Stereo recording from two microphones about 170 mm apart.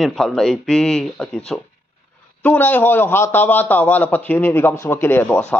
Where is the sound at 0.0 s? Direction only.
Centre (ahead or behind).